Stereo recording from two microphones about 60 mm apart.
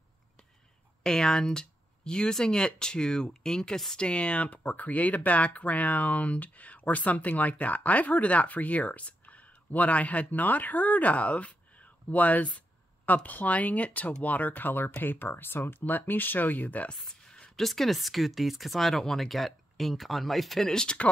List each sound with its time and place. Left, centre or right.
1.0 s speech: centre; by 16.9 s left
16.9 s a sound: centre
17.6 s speech: centre